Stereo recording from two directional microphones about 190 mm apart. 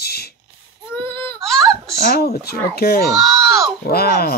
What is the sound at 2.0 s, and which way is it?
Speech, 55° left (ahead or behind).